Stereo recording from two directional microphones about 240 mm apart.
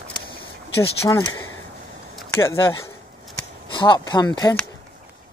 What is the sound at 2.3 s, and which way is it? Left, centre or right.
Speech, centre.